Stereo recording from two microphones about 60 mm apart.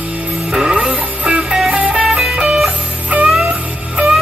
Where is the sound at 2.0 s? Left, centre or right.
Centre.